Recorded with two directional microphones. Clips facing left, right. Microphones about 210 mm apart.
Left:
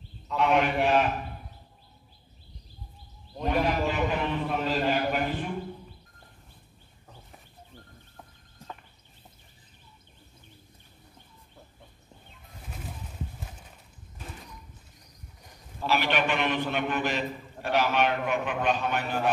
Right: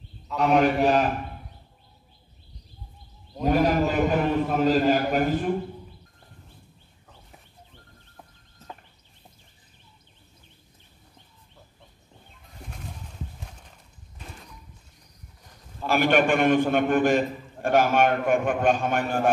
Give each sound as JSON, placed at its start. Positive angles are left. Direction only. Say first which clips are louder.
{"t": 0.4, "sound": "a man's voice", "louder": "right 4 dB", "side_deg": -40}
{"t": 3.4, "sound": "a man's voice", "louder": "right 5 dB", "side_deg": -40}
{"t": 12.6, "sound": "a sound", "louder": "even", "side_deg": 5}
{"t": 15.9, "sound": "a man's voice", "louder": "right 6 dB", "side_deg": -50}